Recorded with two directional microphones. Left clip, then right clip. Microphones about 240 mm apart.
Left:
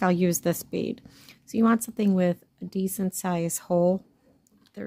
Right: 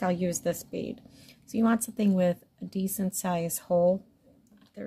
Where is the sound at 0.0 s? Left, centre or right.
Left.